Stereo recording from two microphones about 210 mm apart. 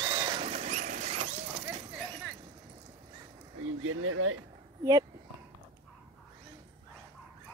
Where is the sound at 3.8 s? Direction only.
90° right.